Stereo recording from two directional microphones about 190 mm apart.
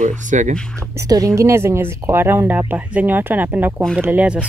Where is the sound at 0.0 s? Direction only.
40° right (ahead or behind).